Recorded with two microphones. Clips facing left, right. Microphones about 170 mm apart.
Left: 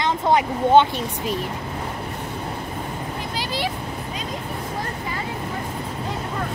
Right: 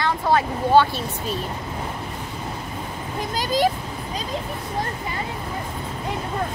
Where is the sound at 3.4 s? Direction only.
45° right (ahead or behind).